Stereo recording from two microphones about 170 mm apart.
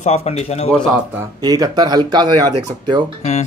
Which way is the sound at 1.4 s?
25° right (ahead or behind).